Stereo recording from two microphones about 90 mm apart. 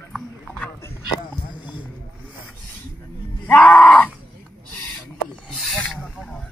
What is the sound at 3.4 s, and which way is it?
Groan, 20° left (ahead or behind).